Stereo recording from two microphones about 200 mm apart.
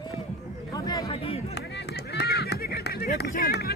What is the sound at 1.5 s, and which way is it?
Run, 60° left (ahead or behind).